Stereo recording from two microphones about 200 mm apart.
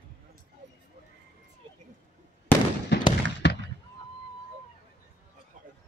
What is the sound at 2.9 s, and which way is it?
Fireworks, 60° left (ahead or behind).